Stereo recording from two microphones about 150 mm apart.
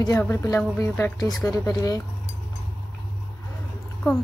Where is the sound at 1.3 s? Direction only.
25° left (ahead or behind).